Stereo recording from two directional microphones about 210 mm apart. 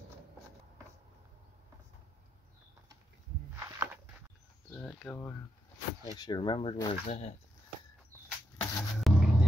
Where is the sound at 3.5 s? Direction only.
15° right (ahead or behind).